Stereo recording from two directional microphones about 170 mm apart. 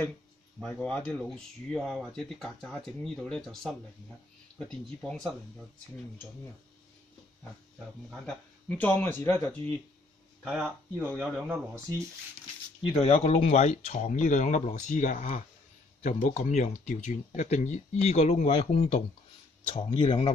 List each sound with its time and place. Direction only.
0.6 s speech: 5° left (ahead or behind)
8.1 s speech: 10° left (ahead or behind)
10.4 s speech: 5° right (ahead or behind)
12.8 s speech: 35° left (ahead or behind)